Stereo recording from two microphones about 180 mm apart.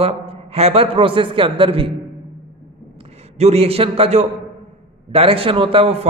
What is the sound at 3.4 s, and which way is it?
A man's voice, 35° right (ahead or behind).